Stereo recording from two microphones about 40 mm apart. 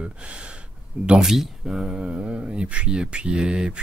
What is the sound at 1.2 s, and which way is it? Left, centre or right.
Speech, centre.